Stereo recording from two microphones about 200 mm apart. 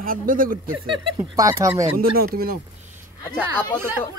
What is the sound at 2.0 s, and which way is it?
Speech, 50° right (ahead or behind).